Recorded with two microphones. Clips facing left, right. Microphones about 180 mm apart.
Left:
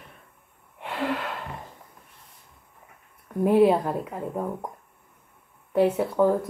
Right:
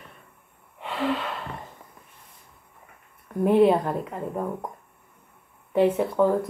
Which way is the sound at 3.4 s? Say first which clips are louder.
Even; 5° left (ahead or behind).